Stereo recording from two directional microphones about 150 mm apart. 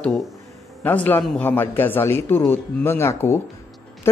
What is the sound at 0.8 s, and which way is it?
A man's voice, 15° left (ahead or behind).